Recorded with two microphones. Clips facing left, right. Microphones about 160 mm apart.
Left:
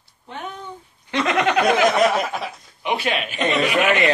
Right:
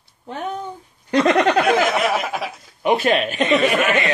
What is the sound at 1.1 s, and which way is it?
Speech, centre (ahead or behind).